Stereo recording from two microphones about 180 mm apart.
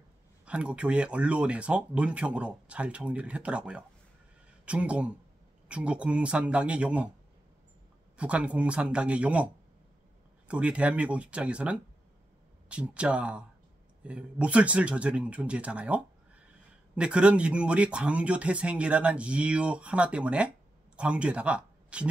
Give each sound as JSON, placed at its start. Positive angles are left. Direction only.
{"t": 0.5, "sound": "speech", "side_deg": -5}
{"t": 8.2, "sound": "speech", "side_deg": -5}
{"t": 10.5, "sound": "speech", "side_deg": -5}